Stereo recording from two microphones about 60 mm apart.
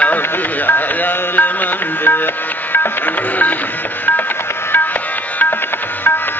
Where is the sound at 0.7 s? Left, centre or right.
Left.